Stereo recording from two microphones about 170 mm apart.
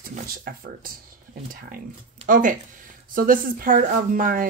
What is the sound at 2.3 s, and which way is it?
Speech, 50° right (ahead or behind).